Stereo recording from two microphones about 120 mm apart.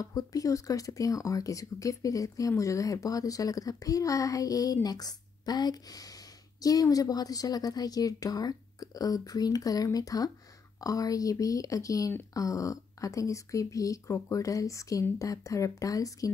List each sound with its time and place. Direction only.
0.0 s a woman's voice: 30° left (ahead or behind)